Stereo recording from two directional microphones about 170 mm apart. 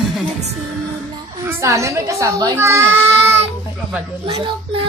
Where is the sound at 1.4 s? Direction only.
15° right (ahead or behind).